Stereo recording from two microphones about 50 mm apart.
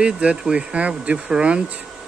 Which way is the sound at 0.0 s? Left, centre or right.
Right.